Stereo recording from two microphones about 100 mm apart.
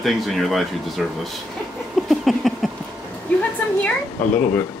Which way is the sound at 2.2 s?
Centre (ahead or behind).